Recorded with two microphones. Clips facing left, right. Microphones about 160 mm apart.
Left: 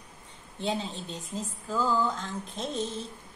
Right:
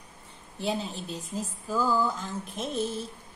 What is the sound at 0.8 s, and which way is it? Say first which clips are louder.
Speech: right 1 dB; 25° left (ahead or behind).